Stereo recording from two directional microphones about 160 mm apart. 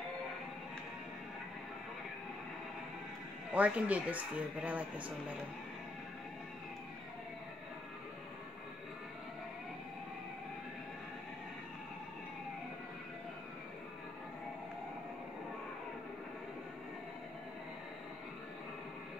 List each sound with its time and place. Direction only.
3.5 s speech: 10° right (ahead or behind)